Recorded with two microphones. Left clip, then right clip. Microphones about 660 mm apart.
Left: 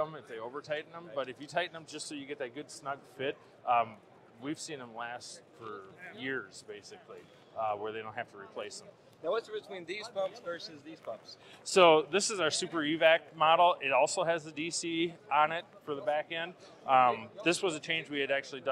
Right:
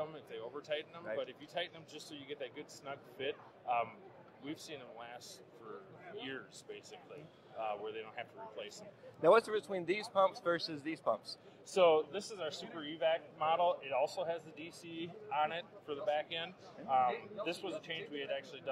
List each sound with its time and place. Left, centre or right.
0.0 s speech: left
9.2 s speech: right
11.6 s speech: left